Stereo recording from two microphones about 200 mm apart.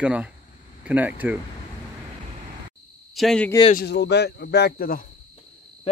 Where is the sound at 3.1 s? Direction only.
5° left (ahead or behind).